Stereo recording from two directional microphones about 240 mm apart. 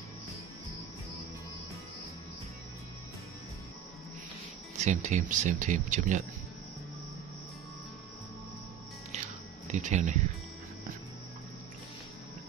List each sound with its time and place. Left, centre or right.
4.8 s speech: right
9.7 s speech: right